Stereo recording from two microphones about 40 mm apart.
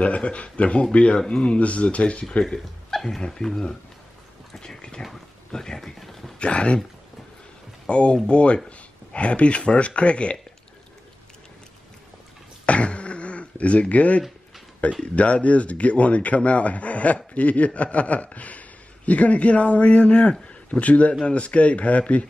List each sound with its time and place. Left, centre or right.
0.0 s a man's voice: left
1.1 s a man's voice: centre
2.3 s speech: centre
5.9 s speech: centre
6.4 s speech: left
7.8 s speech: left
8.6 s a sound: left
9.6 s a man's voice: left
12.6 s a sound: left
14.8 s a man's voice: left